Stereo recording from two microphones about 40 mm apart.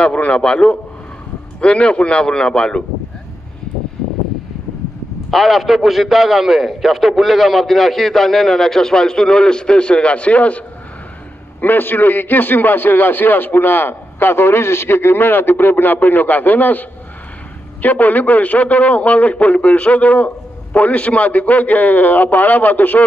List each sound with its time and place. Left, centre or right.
0.0 s a man's voice: left
5.3 s a man's voice: centre; by 10.6 s left
11.6 s a man's voice: left
17.8 s a man's voice: left